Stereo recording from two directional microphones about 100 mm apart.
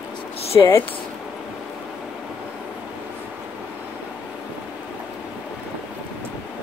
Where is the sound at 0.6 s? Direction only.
25° left (ahead or behind).